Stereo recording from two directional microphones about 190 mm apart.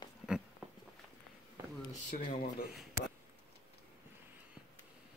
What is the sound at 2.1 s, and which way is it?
Speech, 45° left (ahead or behind).